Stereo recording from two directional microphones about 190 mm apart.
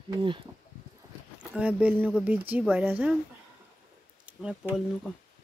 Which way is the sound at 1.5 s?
5° right (ahead or behind).